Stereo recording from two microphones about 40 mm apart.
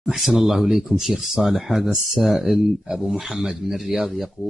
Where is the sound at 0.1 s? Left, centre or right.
Centre.